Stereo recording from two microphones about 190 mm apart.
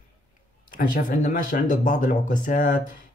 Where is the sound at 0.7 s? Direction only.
45° left (ahead or behind).